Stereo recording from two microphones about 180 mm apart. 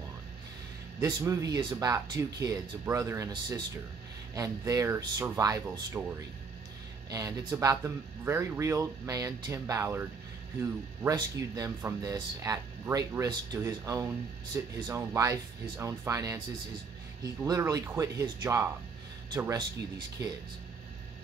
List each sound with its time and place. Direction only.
1.0 s speech: 15° right (ahead or behind)